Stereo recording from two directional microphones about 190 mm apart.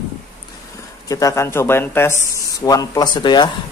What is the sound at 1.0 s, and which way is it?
Speech, 15° left (ahead or behind).